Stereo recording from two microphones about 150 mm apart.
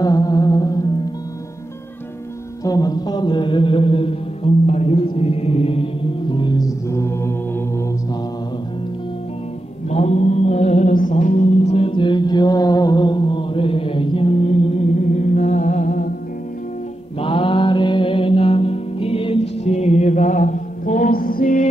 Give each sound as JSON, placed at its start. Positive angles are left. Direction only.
{"t": 0.0, "sound": "music", "side_deg": 25}
{"t": 2.6, "sound": "mantra", "side_deg": 25}
{"t": 6.3, "sound": "music", "side_deg": 30}
{"t": 9.8, "sound": "mantra", "side_deg": 45}
{"t": 17.2, "sound": "mantra", "side_deg": 35}